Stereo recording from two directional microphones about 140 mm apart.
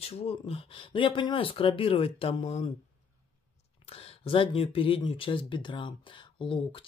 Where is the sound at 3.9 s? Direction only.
45° left (ahead or behind).